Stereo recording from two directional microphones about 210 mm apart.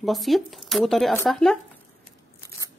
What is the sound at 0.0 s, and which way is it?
Speech, centre (ahead or behind).